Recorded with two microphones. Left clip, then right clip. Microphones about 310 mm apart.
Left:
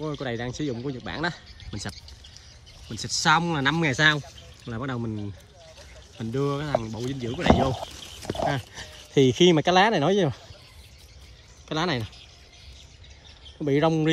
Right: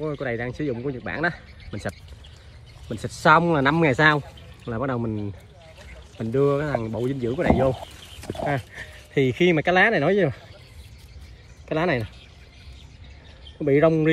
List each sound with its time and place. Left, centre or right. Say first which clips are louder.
0.0 s speech: right 3 dB; centre
6.1 s speech: right 7 dB; centre
7.8 s a sound: left 2 dB; right
8.5 s speech: right 1 dB; centre
11.7 s speech: right 4 dB; centre
13.7 s speech: right 4 dB; centre